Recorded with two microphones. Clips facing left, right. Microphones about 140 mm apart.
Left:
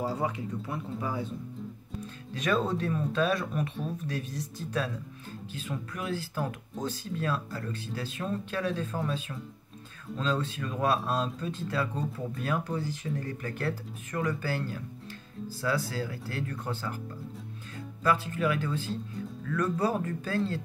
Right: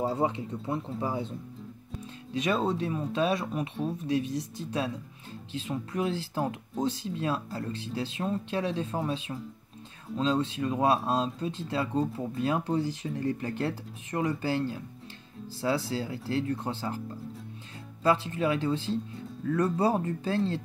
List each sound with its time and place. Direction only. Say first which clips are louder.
0.0 s speech: right 3 dB; 25° right (ahead or behind)
2.3 s speech: right 1 dB; 25° right (ahead or behind)
18.0 s speech: right 2 dB; 25° right (ahead or behind)